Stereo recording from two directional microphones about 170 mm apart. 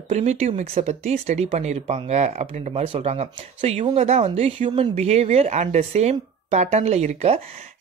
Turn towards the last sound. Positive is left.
turn(degrees=-40)  # may be behind; listen again after turning